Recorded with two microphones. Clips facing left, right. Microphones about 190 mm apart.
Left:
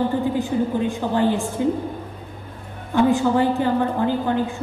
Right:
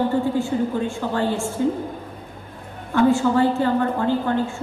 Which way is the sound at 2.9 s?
15° left (ahead or behind).